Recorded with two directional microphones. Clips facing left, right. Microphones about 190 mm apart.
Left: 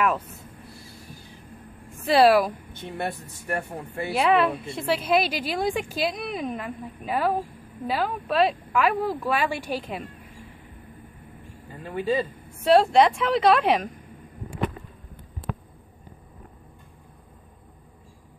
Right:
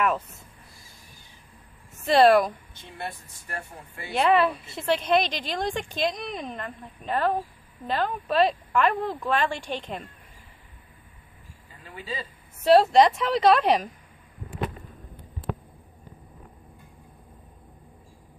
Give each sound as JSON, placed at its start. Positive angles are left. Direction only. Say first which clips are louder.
{"t": 0.0, "sound": "a woman's voice", "louder": "left 1 dB", "side_deg": 0}
{"t": 2.0, "sound": "a woman's voice", "louder": "even", "side_deg": 5}
{"t": 3.0, "sound": "speech", "louder": "left 5 dB", "side_deg": 60}
{"t": 4.1, "sound": "a woman's voice", "louder": "even", "side_deg": 0}
{"t": 11.8, "sound": "speech", "louder": "left 11 dB", "side_deg": 55}
{"t": 12.6, "sound": "a woman's voice", "louder": "even", "side_deg": 0}